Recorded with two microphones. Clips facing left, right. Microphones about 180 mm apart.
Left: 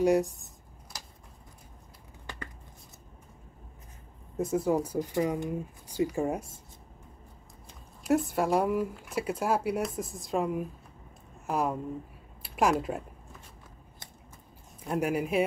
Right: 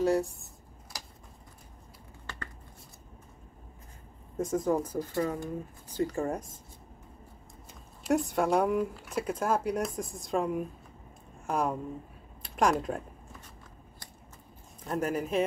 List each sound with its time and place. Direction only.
0.0 s speech: 15° left (ahead or behind)
2.2 s a sound: 15° left (ahead or behind)
4.4 s speech: 10° left (ahead or behind)
8.1 s speech: centre (ahead or behind)
14.9 s speech: 10° left (ahead or behind)